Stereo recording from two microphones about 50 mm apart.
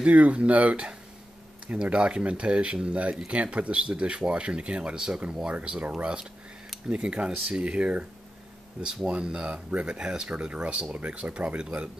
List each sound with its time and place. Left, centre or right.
0.0 s speech: right